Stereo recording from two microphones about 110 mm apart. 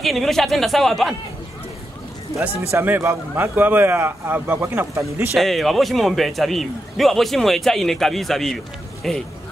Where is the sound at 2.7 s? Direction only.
20° right (ahead or behind).